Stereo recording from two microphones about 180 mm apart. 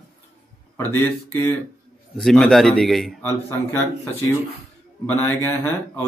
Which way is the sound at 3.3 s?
10° left (ahead or behind).